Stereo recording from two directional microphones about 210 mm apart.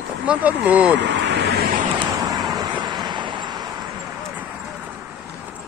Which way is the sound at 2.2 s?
20° right (ahead or behind).